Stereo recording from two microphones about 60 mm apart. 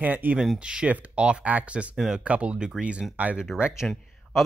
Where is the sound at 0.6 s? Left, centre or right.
Centre.